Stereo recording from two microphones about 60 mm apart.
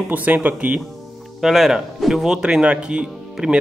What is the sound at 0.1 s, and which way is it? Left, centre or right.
Speech, right.